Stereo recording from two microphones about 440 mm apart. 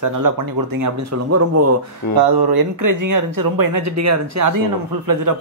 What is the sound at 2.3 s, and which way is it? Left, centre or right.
Speech, right.